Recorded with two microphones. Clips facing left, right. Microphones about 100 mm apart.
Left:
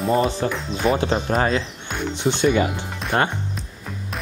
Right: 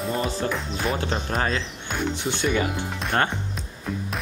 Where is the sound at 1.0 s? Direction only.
20° left (ahead or behind).